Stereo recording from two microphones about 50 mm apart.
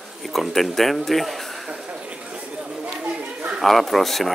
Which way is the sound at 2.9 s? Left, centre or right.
Centre.